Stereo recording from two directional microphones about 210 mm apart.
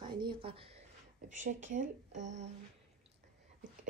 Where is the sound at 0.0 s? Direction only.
20° right (ahead or behind).